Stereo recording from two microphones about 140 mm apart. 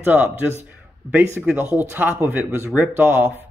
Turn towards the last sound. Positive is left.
turn(degrees=-15)  # may be behind; listen again after turning